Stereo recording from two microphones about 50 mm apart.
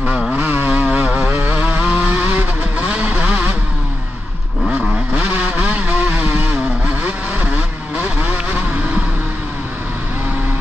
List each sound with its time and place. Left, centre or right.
0.4 s vehicle: right
0.7 s vehicle: right
4.6 s vehicle: centre; by 9.0 s right